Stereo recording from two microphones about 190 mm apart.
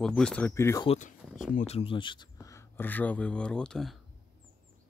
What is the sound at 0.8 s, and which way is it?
Speech, 40° left (ahead or behind).